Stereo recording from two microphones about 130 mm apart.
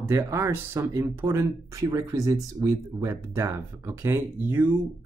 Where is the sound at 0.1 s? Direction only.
20° right (ahead or behind).